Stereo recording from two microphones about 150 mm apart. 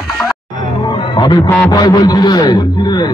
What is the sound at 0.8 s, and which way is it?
Music, 30° left (ahead or behind).